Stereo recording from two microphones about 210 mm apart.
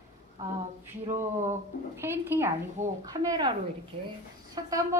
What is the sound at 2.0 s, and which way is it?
Speech, 10° right (ahead or behind).